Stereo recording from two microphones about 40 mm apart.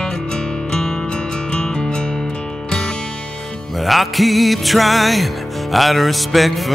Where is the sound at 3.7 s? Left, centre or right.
Centre.